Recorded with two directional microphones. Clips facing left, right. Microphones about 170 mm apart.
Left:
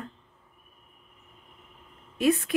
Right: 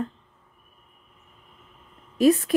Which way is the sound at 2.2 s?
35° right (ahead or behind).